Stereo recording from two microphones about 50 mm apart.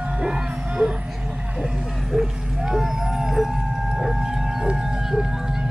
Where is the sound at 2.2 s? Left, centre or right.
Centre.